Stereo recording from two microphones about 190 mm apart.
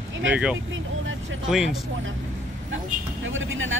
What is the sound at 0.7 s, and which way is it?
Speech, 85° right.